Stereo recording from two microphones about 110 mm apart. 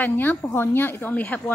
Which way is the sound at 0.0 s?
15° left (ahead or behind).